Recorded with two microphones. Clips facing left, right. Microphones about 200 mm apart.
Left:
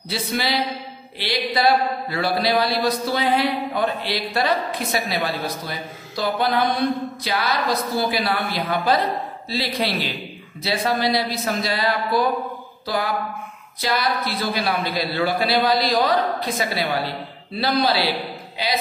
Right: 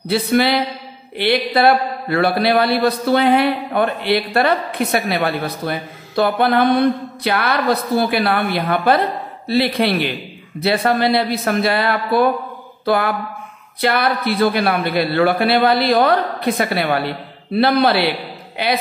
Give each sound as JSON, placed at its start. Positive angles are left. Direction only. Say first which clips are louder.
{"t": 0.1, "sound": "a man's voice", "louder": "right 9 dB", "side_deg": -55}
{"t": 12.8, "sound": "a sound", "louder": "right 7 dB", "side_deg": -60}
{"t": 13.7, "sound": "a man's voice", "louder": "right 5 dB", "side_deg": -60}